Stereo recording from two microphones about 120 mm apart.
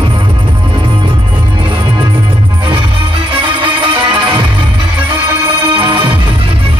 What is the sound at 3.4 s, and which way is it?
Music, 45° right (ahead or behind).